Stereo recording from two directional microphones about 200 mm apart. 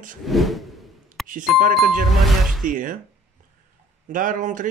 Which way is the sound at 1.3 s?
40° right (ahead or behind).